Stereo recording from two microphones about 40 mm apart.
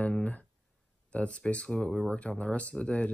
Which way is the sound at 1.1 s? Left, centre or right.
Left.